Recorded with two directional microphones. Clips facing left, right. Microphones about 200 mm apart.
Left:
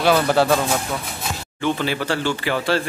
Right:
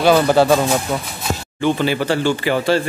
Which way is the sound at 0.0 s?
5° right (ahead or behind).